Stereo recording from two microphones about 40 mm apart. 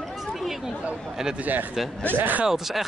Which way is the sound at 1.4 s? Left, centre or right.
Right.